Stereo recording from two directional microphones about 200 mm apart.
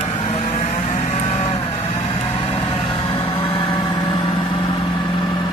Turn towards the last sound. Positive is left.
turn(degrees=25)  # may be behind; listen again after turning